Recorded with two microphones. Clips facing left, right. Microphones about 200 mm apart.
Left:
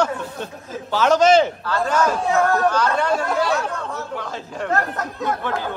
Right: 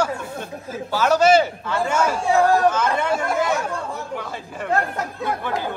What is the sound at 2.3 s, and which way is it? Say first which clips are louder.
Speech: right 4 dB; 30° right (ahead or behind).